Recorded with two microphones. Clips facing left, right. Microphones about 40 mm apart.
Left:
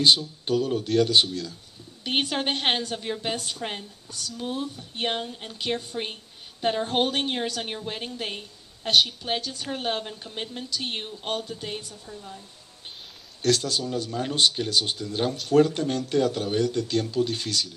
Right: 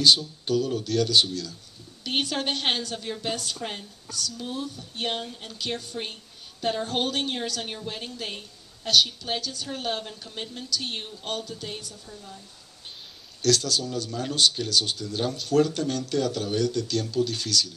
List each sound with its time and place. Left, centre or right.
0.0 s a woman's voice: left
12.1 s a woman's voice: left
13.4 s speech: left